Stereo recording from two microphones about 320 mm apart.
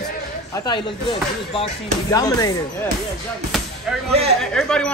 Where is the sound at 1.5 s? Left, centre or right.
Centre.